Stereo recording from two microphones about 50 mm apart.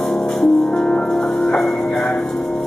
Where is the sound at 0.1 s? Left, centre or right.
Centre.